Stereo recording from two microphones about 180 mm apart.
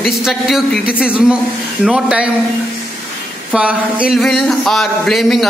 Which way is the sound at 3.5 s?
5° right (ahead or behind).